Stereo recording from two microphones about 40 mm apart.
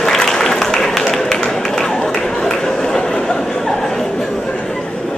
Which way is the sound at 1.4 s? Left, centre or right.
Centre.